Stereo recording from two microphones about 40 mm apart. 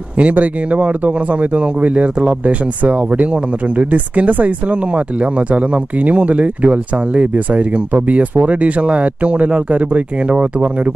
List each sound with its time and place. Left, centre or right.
0.2 s speech: right